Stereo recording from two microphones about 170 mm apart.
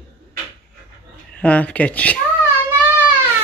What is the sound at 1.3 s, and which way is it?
Speech, 10° left (ahead or behind).